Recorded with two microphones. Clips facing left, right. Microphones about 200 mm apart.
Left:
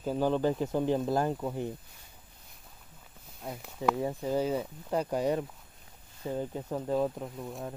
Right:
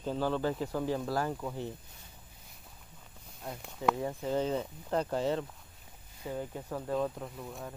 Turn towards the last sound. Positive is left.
turn(degrees=10)  # may be behind; listen again after turning